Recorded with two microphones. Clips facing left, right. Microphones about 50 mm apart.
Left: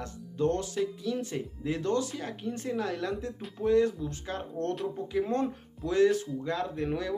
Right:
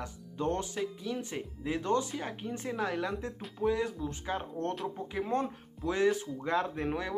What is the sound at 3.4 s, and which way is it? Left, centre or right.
Speech, centre.